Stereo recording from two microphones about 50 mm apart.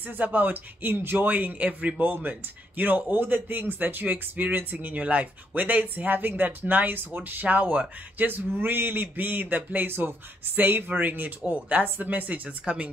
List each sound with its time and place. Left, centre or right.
0.0 s speech: right
2.0 s speech: right
9.8 s speech: right